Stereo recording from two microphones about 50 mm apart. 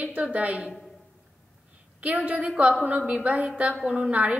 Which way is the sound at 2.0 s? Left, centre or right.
Right.